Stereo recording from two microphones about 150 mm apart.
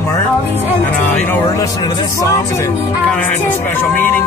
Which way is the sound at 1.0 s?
15° left (ahead or behind).